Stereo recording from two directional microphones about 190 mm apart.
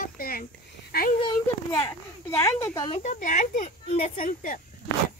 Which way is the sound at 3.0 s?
40° left (ahead or behind).